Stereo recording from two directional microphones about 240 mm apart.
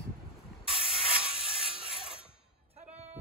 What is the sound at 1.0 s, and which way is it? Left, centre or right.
Music, right.